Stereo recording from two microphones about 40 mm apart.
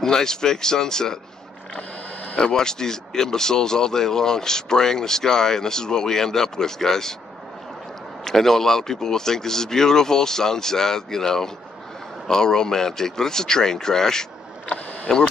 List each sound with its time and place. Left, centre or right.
0.0 s speech: centre
2.3 s speech: centre
8.2 s speech: centre